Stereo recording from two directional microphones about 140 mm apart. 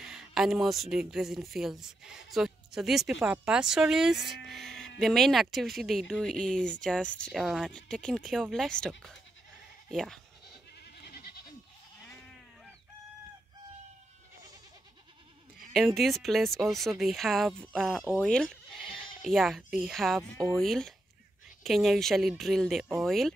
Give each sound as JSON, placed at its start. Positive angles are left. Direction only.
{"t": 0.0, "sound": "speech", "side_deg": -5}
{"t": 11.1, "sound": "goat", "side_deg": 90}
{"t": 15.5, "sound": "speech", "side_deg": 0}